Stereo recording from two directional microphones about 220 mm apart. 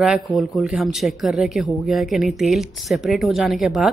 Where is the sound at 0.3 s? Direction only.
Centre (ahead or behind).